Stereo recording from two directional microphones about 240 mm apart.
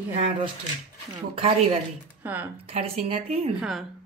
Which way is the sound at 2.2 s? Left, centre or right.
Centre.